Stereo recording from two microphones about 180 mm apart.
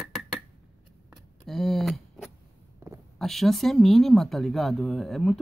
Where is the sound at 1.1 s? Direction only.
Centre (ahead or behind).